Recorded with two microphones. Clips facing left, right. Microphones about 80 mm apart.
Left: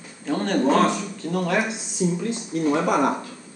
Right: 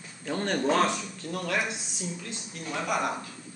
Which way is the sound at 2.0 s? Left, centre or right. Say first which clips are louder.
Left 14 dB; centre.